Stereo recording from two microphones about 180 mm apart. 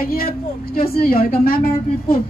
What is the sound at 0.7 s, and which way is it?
Speech, 55° left (ahead or behind).